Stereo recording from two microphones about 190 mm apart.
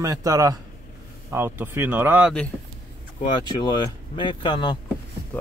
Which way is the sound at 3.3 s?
25° left (ahead or behind).